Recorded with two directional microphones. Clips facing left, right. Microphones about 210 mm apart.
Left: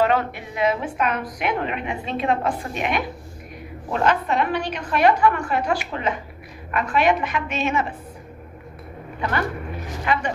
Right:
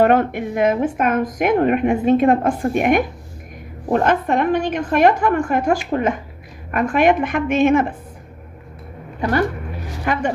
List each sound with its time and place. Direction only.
0.0 s a woman's voice: 50° right (ahead or behind)